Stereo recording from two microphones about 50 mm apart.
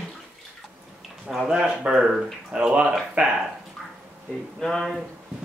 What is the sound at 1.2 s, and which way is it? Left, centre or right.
Speech, centre.